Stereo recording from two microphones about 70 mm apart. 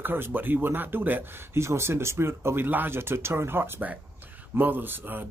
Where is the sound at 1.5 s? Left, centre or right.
Right.